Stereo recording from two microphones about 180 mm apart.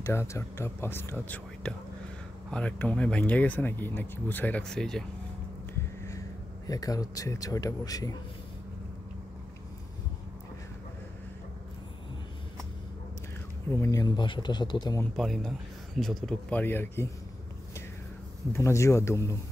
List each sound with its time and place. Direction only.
0.0 s speech: 15° left (ahead or behind)
6.7 s a man's voice: 20° left (ahead or behind)
13.7 s a man's voice: 15° left (ahead or behind)
15.1 s speech: centre (ahead or behind)
18.5 s speech: 15° left (ahead or behind)